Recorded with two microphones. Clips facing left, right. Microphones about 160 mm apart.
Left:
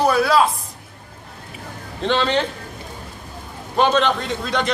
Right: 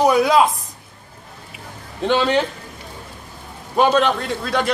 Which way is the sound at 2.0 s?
10° right (ahead or behind).